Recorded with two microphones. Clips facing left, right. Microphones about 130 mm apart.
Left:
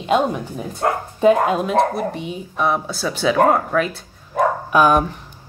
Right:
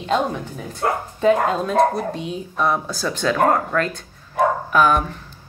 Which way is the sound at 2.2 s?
5° left (ahead or behind).